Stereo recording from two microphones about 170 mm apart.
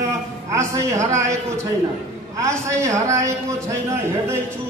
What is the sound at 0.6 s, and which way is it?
A woman's voice, 15° right (ahead or behind).